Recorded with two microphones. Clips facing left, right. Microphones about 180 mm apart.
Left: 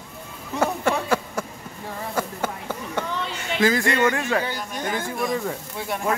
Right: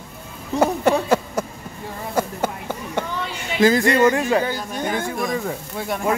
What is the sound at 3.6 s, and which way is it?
Speech, 40° right (ahead or behind).